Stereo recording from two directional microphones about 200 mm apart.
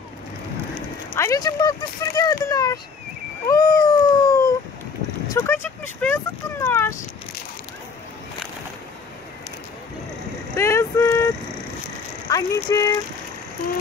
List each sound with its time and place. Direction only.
1.1 s speech: 15° left (ahead or behind)
3.4 s cat: 20° left (ahead or behind)
5.3 s speech: 15° left (ahead or behind)
10.5 s speech: 15° left (ahead or behind)